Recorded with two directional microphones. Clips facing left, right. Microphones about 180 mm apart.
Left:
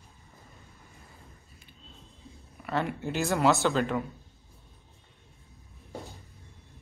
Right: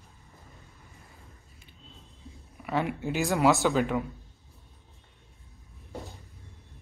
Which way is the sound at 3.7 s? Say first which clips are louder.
Right 1 dB; 15° right (ahead or behind).